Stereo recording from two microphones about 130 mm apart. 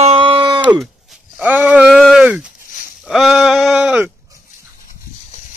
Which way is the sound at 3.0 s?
5° right (ahead or behind).